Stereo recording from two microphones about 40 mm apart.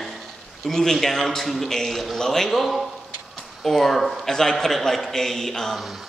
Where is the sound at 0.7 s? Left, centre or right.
Centre.